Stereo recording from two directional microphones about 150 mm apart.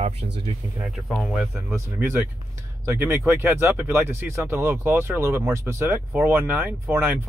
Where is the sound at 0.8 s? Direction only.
Centre (ahead or behind).